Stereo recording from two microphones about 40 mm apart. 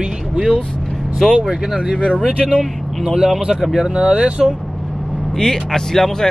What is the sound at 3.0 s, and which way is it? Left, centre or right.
Speech, centre.